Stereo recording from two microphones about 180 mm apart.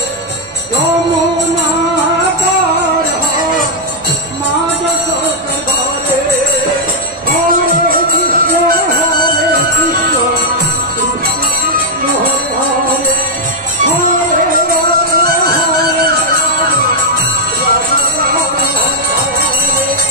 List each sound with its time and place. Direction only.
15.1 s music: 55° right (ahead or behind)